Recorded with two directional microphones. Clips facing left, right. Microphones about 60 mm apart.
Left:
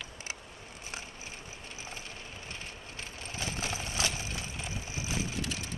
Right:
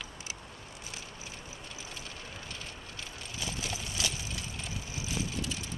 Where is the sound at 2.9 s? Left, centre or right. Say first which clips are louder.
Left 2 dB; left.